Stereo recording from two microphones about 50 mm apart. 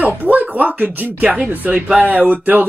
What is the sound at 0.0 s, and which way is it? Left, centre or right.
Speech, right.